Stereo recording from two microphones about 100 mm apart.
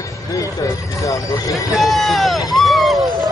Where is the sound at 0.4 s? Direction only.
30° left (ahead or behind).